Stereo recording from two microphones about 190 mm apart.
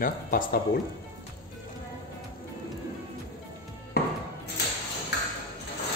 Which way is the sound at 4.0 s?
55° left (ahead or behind).